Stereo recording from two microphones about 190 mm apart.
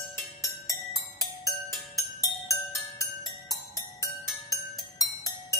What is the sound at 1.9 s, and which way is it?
Music, 15° left (ahead or behind).